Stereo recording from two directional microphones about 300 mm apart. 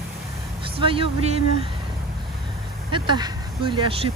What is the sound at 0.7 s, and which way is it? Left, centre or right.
Speech, centre.